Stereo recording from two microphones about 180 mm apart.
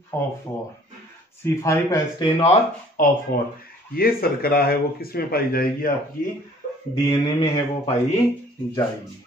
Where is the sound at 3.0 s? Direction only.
45° left (ahead or behind).